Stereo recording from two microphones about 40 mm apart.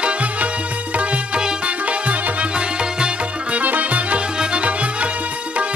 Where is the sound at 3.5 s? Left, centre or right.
Right.